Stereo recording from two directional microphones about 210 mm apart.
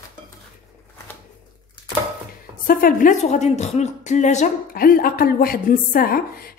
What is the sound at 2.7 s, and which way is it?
Speech, 45° left (ahead or behind).